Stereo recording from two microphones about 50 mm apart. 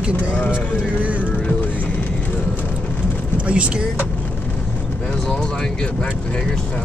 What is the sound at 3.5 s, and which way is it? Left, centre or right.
Speech, right.